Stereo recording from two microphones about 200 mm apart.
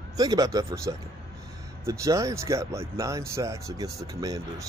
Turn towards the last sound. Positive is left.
turn(degrees=-15)  # may be behind; listen again after turning